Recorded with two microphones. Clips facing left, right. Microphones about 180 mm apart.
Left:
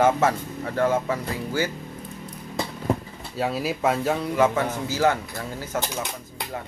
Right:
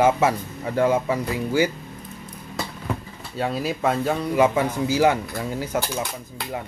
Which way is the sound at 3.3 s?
Centre (ahead or behind).